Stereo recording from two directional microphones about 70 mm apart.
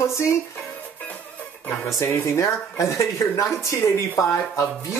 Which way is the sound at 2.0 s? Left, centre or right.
Left.